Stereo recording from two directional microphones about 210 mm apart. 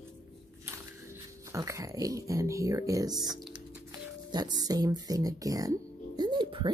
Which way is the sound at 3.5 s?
20° right (ahead or behind).